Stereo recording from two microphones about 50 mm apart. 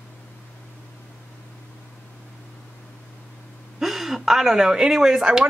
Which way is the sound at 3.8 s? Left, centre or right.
Centre.